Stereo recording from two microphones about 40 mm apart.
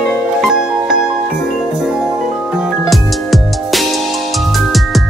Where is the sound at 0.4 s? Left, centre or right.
Centre.